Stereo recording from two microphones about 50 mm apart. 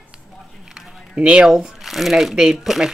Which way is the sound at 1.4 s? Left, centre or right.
Centre.